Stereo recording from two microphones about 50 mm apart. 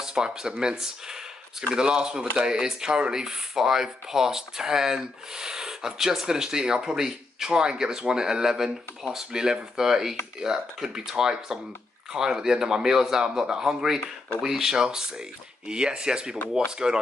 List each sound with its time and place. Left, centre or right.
0.0 s speech: centre